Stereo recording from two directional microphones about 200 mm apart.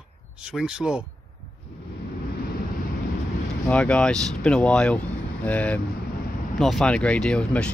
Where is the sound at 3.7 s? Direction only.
5° left (ahead or behind).